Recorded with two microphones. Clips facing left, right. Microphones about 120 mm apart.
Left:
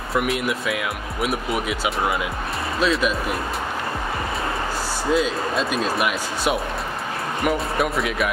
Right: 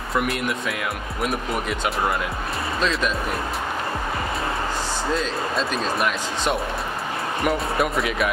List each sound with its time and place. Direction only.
0.1 s speech: centre (ahead or behind)
5.1 s speech: 5° left (ahead or behind)